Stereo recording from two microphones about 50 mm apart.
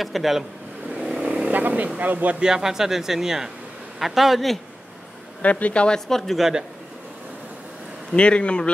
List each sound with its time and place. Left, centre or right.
0.0 s a man's voice: centre
1.2 s vehicle: right
2.0 s speech: right
2.4 s a man's voice: centre
5.4 s speech: left
5.9 s speech: centre
8.1 s speech: left